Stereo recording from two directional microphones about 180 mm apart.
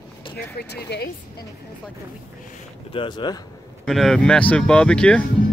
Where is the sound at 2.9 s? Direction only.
25° left (ahead or behind).